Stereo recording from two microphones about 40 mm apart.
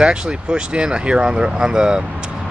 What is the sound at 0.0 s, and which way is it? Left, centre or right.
Speech, right.